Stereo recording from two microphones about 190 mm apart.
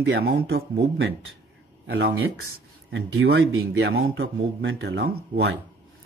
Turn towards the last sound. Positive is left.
turn(degrees=-65)  # may be behind; listen again after turning